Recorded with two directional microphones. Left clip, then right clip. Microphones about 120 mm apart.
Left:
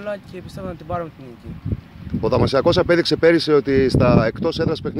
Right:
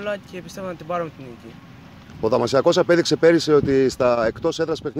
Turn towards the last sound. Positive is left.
turn(degrees=20)  # may be behind; listen again after turning